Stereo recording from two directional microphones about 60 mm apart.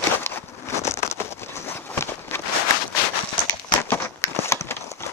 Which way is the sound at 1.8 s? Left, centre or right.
Left.